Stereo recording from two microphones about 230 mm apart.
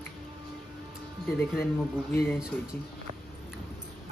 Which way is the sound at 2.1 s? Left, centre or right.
Centre.